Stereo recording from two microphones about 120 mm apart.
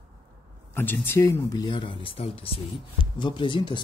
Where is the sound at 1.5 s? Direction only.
40° left (ahead or behind); by 2.6 s 55° left (ahead or behind).